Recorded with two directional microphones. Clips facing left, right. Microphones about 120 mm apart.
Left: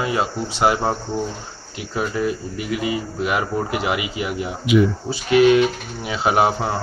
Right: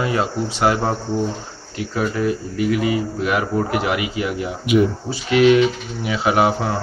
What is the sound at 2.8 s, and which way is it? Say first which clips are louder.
Speech: right 3 dB; 20° left (ahead or behind).